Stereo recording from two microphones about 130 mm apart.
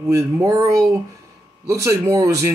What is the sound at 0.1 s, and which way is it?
Speech, 25° right (ahead or behind).